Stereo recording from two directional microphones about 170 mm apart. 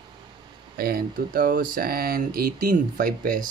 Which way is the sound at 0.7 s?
60° right (ahead or behind).